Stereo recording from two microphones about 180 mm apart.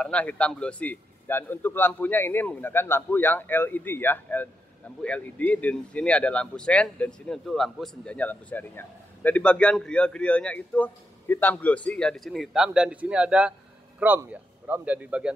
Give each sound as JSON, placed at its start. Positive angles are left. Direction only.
{"t": 0.0, "sound": "speech", "side_deg": 5}